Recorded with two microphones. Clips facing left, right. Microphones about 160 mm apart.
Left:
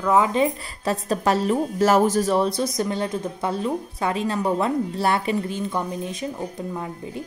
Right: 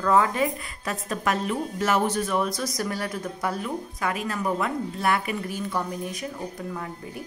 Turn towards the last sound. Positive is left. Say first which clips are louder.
# left 4 dB
turn(degrees=25)  # may be behind; listen again after turning